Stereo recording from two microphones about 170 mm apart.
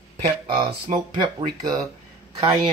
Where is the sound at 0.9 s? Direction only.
30° right (ahead or behind).